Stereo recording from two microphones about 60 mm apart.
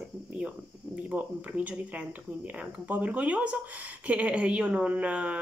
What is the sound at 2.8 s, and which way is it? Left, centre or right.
Speech, right.